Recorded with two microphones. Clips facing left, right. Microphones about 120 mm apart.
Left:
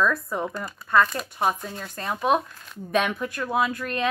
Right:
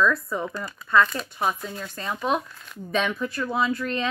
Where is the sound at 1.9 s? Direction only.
50° left (ahead or behind).